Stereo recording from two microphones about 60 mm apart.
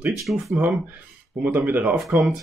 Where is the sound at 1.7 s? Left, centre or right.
Right.